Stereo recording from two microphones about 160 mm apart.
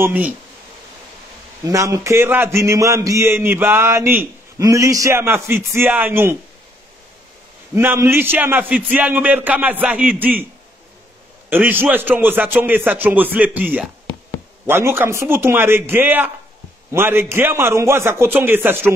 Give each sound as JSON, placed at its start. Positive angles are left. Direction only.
{"t": 0.0, "sound": "a man's voice", "side_deg": -10}
{"t": 1.6, "sound": "a man's voice", "side_deg": -20}
{"t": 7.7, "sound": "a man's voice", "side_deg": -15}
{"t": 11.5, "sound": "a man's voice", "side_deg": -10}